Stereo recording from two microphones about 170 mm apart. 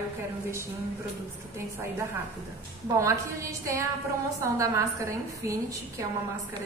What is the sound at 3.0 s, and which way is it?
A woman's voice, 20° right (ahead or behind).